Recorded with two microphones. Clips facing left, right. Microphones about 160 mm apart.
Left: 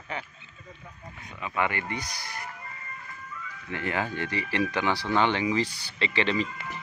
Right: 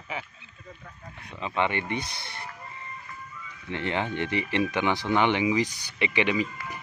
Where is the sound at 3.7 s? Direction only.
25° right (ahead or behind).